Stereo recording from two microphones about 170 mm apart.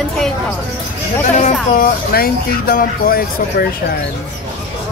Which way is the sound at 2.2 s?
60° left (ahead or behind).